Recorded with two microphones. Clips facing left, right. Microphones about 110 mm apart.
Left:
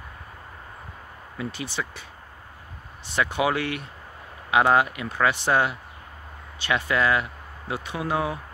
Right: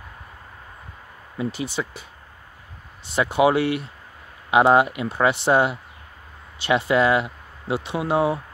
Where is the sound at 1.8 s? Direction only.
25° right (ahead or behind).